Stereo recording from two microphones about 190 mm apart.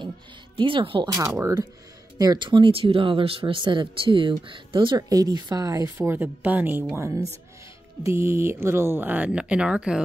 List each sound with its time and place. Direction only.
0.6 s speech: 25° right (ahead or behind)
1.1 s speech: 15° right (ahead or behind)